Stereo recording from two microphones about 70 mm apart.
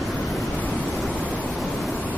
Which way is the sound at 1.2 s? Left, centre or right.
Centre.